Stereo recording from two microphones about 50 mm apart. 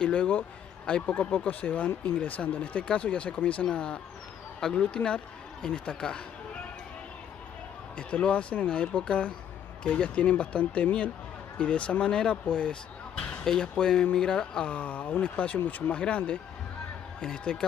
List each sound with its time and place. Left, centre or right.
0.0 s speech: centre
2.8 s speech: centre
3.7 s speech: centre
8.1 s speech: left
14.7 s speech: left